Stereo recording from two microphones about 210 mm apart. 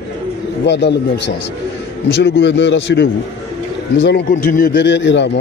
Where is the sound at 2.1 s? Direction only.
55° left (ahead or behind).